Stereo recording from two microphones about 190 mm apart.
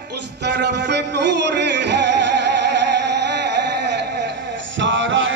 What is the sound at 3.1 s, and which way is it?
Music, 65° right (ahead or behind).